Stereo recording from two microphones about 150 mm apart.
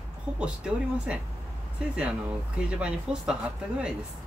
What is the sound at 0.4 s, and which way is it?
Speech, 5° right (ahead or behind).